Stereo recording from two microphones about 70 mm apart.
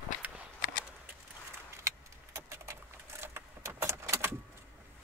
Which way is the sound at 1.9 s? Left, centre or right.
Right.